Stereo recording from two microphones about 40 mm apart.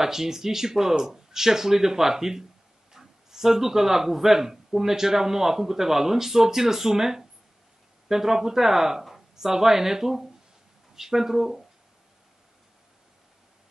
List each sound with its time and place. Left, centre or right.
0.0 s speech: centre